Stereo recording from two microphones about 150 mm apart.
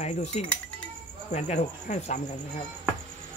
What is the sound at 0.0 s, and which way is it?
Speech, 50° left (ahead or behind).